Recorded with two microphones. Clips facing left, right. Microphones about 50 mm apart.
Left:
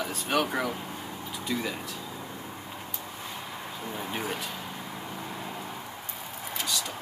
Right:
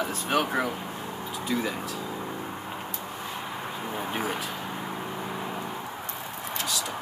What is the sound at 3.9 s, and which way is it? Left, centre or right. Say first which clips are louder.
Speech: right 3 dB; centre.